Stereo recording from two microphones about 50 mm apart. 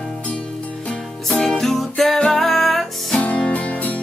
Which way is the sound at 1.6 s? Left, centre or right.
Centre.